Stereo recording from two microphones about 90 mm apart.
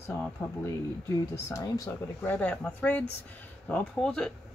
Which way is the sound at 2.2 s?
15° left (ahead or behind).